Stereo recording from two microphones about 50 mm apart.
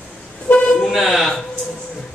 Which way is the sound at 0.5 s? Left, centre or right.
Left.